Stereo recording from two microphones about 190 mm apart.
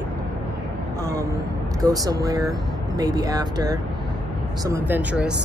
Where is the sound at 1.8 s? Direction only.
20° right (ahead or behind).